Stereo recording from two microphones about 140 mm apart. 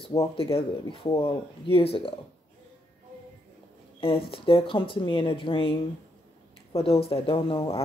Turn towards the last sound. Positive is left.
turn(degrees=40)  # may be behind; listen again after turning